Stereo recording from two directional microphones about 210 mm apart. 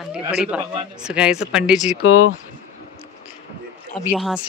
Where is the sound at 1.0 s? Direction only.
5° right (ahead or behind).